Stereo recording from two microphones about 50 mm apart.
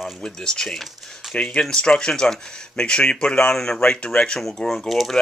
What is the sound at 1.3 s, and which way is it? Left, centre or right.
Speech, left.